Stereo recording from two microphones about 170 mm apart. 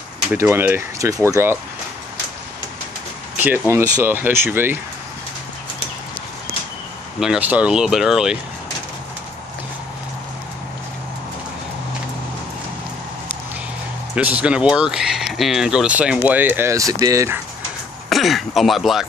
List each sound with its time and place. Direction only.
0.3 s speech: 15° right (ahead or behind)
3.3 s speech: 10° right (ahead or behind)
7.2 s speech: 5° right (ahead or behind)
14.1 s speech: 5° right (ahead or behind)
18.1 s speech: centre (ahead or behind)